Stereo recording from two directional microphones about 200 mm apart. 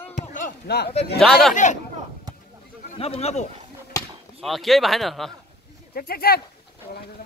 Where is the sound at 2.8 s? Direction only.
30° left (ahead or behind).